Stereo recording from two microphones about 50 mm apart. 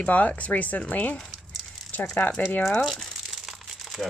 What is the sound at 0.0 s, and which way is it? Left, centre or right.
Speech, left.